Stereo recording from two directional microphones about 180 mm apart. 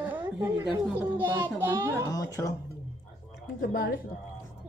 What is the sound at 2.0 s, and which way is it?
Speech, 20° left (ahead or behind).